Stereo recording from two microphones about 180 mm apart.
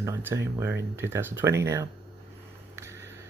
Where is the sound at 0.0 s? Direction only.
15° right (ahead or behind).